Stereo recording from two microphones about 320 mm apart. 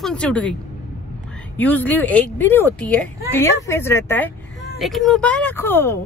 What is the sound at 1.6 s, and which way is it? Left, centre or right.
Speech, centre.